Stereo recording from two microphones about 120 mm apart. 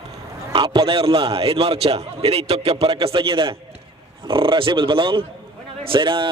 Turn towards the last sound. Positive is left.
turn(degrees=-45)  # may be behind; listen again after turning